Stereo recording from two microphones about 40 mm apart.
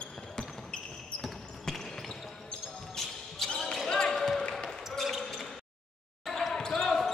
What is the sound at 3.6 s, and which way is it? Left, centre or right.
Basketball bounce, centre.